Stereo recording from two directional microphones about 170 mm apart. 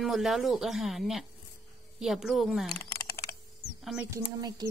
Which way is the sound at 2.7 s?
20° left (ahead or behind).